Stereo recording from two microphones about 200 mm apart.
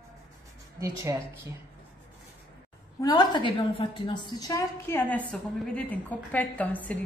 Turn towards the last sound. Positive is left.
turn(degrees=5)  # may be behind; listen again after turning